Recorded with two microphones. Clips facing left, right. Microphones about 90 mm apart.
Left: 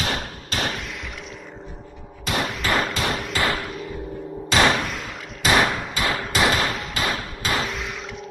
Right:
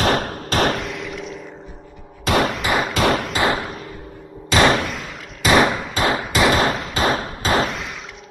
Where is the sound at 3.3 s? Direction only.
20° right (ahead or behind).